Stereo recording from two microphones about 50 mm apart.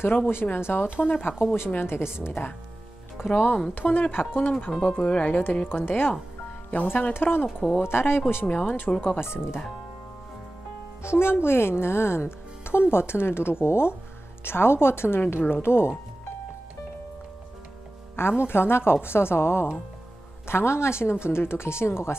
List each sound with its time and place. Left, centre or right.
0.3 s a woman's voice: left
1.4 s a woman's voice: left
3.3 s a woman's voice: left
4.5 s speech: centre
4.8 s speech: left
5.7 s a woman's voice: left
6.7 s a woman's voice: left
7.2 s a woman's voice: left
8.5 s speech: left
9.2 s a woman's voice: left
11.0 s a woman's voice: left
18.1 s a woman's voice: left